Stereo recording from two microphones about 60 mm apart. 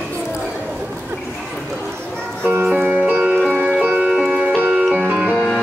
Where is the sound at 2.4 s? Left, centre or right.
Right.